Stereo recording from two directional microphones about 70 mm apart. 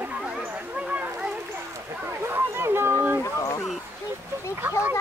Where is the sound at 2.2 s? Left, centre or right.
Right.